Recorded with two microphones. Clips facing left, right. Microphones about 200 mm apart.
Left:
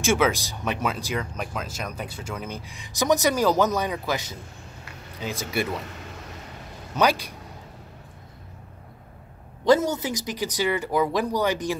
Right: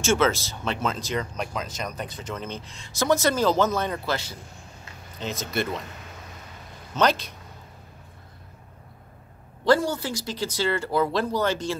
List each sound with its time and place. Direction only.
0.0 s speech: 15° left (ahead or behind)
7.0 s speech: 10° left (ahead or behind)
9.7 s speech: 20° left (ahead or behind)